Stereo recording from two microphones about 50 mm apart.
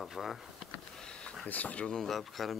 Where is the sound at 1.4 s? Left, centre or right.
Left.